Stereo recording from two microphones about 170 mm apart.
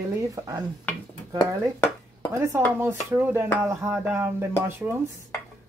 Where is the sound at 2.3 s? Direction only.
15° right (ahead or behind).